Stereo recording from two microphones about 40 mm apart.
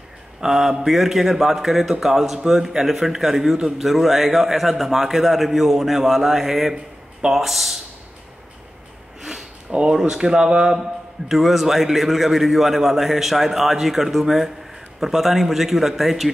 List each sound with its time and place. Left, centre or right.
0.4 s a man's voice: centre
9.2 s a sound: centre
9.7 s a man's voice: right
11.2 s a man's voice: centre